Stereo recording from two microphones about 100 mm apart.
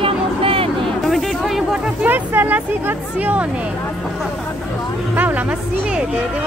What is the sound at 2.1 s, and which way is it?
Speech, 20° right (ahead or behind).